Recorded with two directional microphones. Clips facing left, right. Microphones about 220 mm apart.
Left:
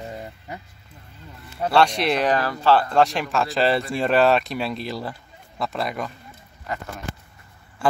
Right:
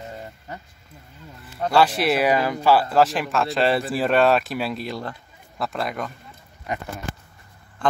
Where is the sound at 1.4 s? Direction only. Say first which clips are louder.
Even; centre (ahead or behind).